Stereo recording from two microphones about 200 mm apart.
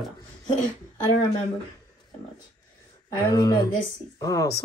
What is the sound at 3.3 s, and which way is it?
A woman's voice, 20° left (ahead or behind).